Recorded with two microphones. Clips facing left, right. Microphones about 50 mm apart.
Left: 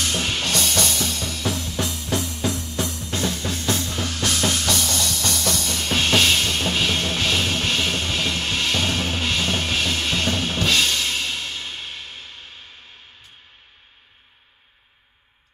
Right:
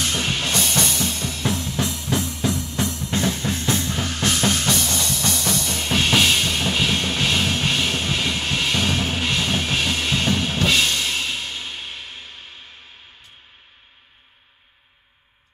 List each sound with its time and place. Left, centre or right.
0.2 s music: centre